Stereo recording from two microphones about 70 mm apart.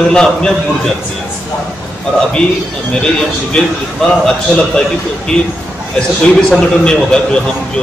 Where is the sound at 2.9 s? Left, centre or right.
Centre.